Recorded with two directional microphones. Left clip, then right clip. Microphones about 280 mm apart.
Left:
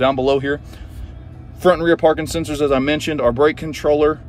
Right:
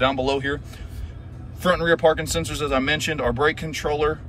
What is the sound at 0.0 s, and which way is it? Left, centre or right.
Speech, centre.